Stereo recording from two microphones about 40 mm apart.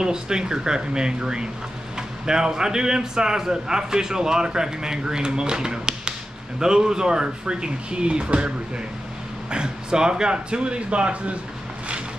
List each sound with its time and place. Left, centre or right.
0.0 s speech: centre